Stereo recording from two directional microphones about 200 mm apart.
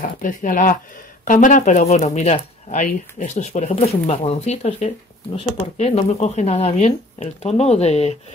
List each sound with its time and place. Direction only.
0.2 s speech: 40° left (ahead or behind)